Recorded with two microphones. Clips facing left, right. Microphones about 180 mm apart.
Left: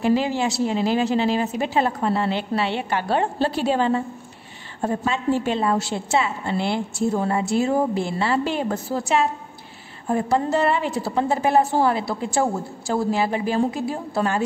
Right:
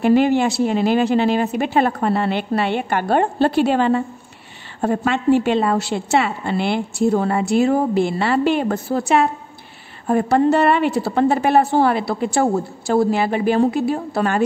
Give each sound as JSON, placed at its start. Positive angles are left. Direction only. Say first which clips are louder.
{"t": 0.0, "sound": "a woman's voice", "louder": "right 6 dB", "side_deg": -60}